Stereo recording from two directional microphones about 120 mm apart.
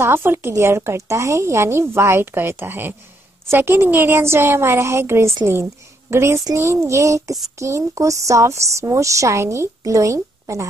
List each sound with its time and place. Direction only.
0.0 s a woman's voice: 20° right (ahead or behind)